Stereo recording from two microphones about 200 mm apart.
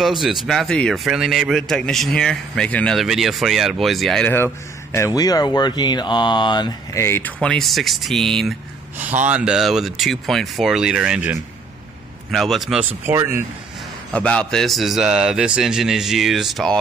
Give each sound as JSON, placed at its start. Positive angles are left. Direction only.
{"t": 0.0, "sound": "speech", "side_deg": 0}
{"t": 8.9, "sound": "speech", "side_deg": -10}
{"t": 13.0, "sound": "speech", "side_deg": -15}
{"t": 14.1, "sound": "speech", "side_deg": 5}